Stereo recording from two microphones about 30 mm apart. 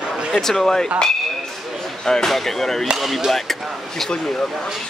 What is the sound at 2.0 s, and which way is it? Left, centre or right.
Speech, centre.